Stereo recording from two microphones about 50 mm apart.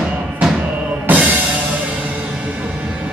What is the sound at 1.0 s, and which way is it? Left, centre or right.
Music, right.